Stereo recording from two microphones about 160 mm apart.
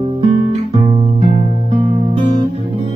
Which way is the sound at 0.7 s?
40° right (ahead or behind).